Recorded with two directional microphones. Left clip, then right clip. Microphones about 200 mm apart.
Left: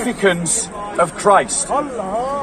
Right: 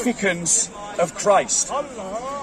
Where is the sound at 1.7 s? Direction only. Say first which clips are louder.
Left 10 dB; 50° left (ahead or behind).